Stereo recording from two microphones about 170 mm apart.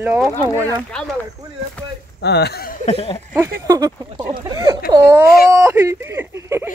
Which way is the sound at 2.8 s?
35° left (ahead or behind).